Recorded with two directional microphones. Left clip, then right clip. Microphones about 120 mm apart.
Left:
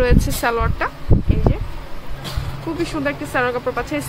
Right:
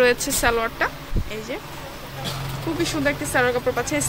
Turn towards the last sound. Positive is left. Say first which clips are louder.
# even
turn(degrees=0)  # may be behind; listen again after turning